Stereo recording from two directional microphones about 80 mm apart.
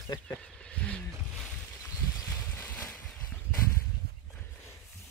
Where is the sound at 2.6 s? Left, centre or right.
Left.